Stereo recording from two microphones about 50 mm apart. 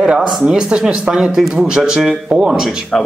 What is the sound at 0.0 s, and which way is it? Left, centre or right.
Speech, right.